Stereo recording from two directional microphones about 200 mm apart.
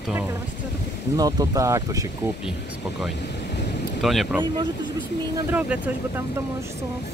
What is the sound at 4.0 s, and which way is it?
Speech, centre (ahead or behind).